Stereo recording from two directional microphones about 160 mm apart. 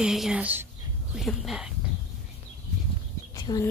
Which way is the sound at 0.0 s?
5° right (ahead or behind).